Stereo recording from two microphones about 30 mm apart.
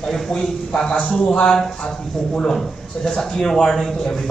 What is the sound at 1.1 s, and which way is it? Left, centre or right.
Speech, left.